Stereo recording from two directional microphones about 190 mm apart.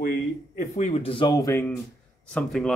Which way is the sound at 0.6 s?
40° left (ahead or behind).